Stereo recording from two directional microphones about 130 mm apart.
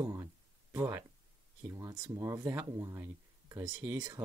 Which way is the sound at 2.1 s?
25° right (ahead or behind).